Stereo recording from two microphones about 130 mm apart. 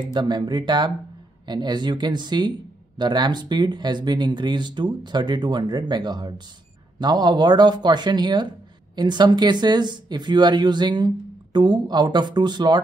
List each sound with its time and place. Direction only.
0.1 s speech: 35° right (ahead or behind)